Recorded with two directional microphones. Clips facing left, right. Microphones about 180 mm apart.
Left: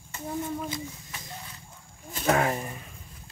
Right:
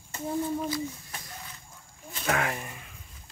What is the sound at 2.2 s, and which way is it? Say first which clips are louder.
Speech: left 5 dB; 35° left (ahead or behind).